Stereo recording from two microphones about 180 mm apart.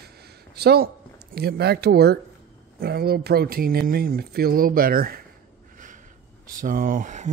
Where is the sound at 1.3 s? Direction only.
60° right (ahead or behind).